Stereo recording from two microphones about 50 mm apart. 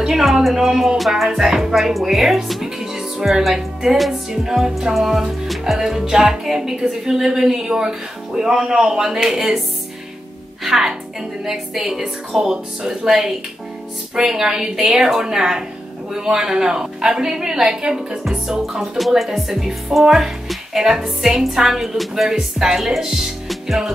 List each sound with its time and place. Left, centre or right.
0.0 s a woman's voice: centre
10.6 s a child's voice: centre
23.5 s music: centre